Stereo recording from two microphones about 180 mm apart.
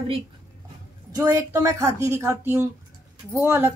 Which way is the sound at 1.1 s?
20° right (ahead or behind).